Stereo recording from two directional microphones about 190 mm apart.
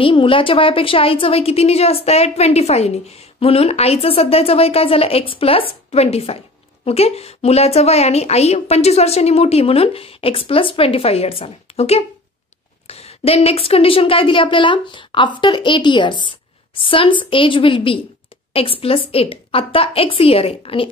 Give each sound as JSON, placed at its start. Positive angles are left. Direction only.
{"t": 0.0, "sound": "a woman's voice", "side_deg": 25}